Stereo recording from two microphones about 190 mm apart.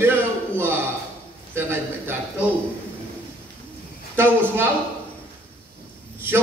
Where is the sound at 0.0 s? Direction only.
10° right (ahead or behind).